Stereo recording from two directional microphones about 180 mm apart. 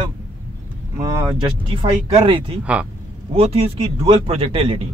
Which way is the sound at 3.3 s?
35° right (ahead or behind).